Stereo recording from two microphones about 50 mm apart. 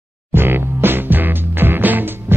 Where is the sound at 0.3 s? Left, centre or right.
Right.